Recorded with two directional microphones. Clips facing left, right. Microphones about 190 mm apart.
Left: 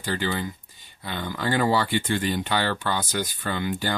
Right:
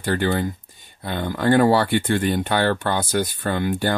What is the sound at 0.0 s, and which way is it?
Speech, 55° right (ahead or behind).